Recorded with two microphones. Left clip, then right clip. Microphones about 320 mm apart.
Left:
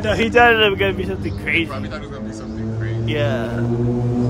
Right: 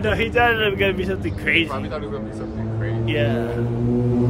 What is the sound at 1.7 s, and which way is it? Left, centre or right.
Speech, centre.